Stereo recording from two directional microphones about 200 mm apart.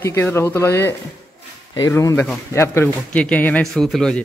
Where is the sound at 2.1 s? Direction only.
5° left (ahead or behind).